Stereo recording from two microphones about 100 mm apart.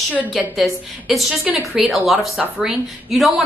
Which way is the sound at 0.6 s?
Centre (ahead or behind).